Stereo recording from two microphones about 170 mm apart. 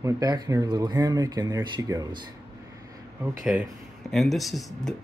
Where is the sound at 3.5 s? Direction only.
10° right (ahead or behind).